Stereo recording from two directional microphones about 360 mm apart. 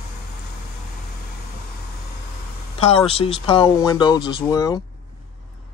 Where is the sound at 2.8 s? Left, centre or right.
Centre.